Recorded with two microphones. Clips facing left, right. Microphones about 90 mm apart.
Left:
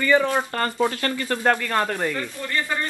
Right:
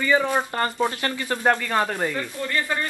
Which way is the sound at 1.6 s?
5° right (ahead or behind).